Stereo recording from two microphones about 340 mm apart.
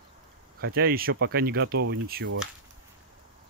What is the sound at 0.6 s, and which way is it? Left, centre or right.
Speech, right.